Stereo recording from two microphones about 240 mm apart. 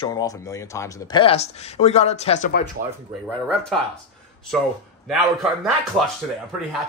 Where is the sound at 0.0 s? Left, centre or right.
Centre; by 2.6 s left.